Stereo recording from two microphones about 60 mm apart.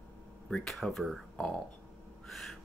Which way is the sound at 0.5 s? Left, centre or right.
Centre.